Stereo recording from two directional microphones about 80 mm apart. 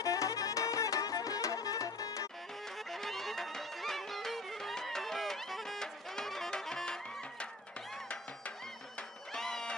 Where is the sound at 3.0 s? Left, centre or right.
Centre.